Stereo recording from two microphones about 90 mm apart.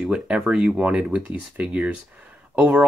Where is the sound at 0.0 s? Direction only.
10° right (ahead or behind).